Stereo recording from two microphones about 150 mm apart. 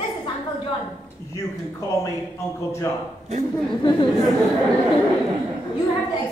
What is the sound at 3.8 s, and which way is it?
Speech, 30° left (ahead or behind).